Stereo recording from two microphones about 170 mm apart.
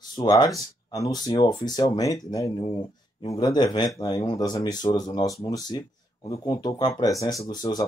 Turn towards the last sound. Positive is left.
turn(degrees=20)  # may be behind; listen again after turning